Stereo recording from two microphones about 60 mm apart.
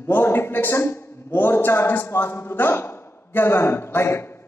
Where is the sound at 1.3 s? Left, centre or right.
Left.